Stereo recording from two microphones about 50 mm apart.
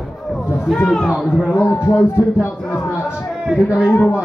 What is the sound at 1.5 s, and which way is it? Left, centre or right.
Speech, left.